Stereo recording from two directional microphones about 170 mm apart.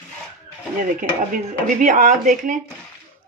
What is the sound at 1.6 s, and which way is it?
Speech, 45° right (ahead or behind).